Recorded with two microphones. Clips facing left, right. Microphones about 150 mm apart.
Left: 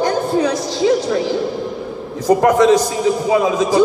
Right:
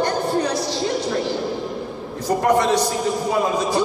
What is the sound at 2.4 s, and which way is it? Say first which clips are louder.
Speech: left 3 dB; 90° left.